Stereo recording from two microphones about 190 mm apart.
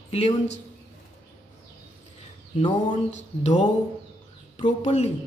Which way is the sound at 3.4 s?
40° left (ahead or behind).